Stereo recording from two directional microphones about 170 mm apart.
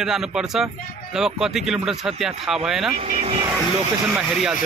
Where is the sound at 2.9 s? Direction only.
40° right (ahead or behind).